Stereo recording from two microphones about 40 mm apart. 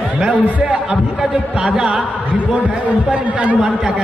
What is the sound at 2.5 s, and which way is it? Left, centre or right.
A man's voice, right.